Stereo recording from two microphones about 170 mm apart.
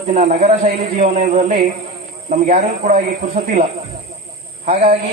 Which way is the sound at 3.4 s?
55° right (ahead or behind).